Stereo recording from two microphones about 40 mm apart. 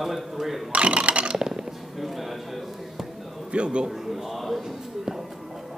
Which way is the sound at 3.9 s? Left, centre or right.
Centre.